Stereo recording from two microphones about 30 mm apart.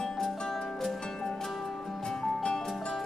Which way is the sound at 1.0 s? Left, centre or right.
Left.